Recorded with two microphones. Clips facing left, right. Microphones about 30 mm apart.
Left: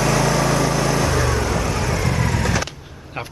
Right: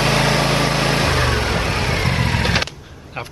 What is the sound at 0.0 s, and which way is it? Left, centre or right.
Vehicle, right.